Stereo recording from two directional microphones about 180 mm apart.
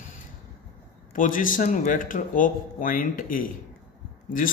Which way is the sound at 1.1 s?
50° left (ahead or behind).